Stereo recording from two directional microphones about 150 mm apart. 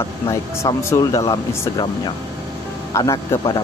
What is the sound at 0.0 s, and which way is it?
Speech, 20° left (ahead or behind).